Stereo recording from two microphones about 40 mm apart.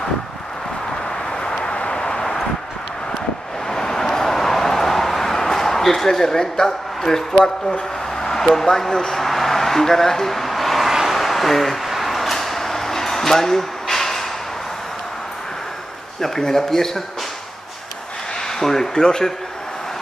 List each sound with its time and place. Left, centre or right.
1.3 s vehicle: centre
3.6 s a sound: centre
7.3 s speech: centre
9.2 s vehicle: centre
10.9 s vehicle: centre
11.1 s a sound: centre
16.2 s speech: centre
18.5 s speech: centre